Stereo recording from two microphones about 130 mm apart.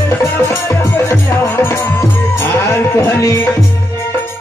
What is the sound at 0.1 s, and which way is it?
Music, 15° left (ahead or behind).